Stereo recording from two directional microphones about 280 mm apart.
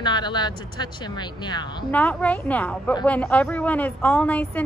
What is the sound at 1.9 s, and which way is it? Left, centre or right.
A woman's voice, centre.